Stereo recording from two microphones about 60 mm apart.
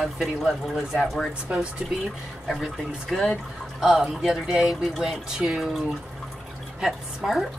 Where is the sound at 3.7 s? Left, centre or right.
Centre.